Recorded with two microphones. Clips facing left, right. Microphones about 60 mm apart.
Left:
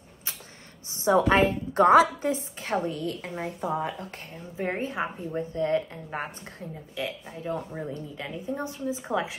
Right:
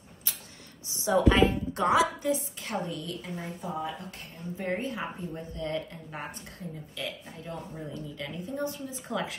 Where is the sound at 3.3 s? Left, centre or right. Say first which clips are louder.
Left 6 dB; left.